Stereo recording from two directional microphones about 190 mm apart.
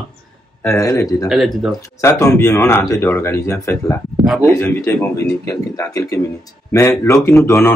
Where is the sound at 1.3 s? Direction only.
Centre (ahead or behind).